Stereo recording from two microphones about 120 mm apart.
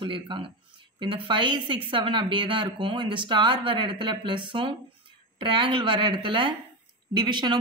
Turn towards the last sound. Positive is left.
turn(degrees=-40)  # may be behind; listen again after turning